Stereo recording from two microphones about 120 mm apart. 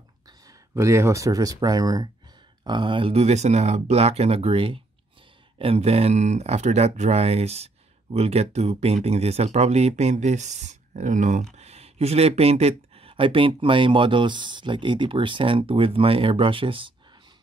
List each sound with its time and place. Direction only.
0.5 s speech: 25° right (ahead or behind); by 11.4 s 90° right
11.5 s speech: 65° right (ahead or behind); by 16.9 s 45° right (ahead or behind)